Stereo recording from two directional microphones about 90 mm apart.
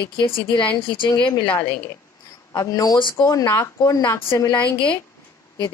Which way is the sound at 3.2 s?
35° left (ahead or behind).